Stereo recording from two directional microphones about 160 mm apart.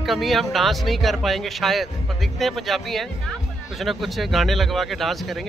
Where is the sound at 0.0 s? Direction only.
Centre (ahead or behind).